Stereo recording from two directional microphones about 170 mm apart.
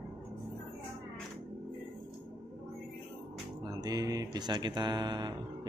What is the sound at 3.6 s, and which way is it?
Speech, 20° right (ahead or behind).